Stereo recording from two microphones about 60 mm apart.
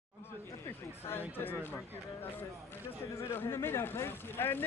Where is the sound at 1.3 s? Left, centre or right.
Left.